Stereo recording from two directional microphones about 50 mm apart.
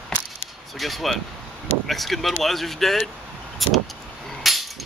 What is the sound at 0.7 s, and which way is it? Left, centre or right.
Speech, centre.